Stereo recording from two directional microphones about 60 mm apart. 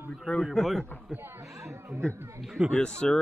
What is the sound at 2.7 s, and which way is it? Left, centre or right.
Speech, centre.